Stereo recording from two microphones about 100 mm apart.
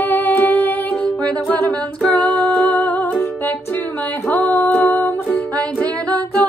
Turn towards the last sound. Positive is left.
turn(degrees=15)  # may be behind; listen again after turning